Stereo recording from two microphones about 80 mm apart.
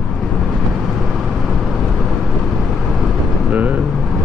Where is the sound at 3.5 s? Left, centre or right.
Centre.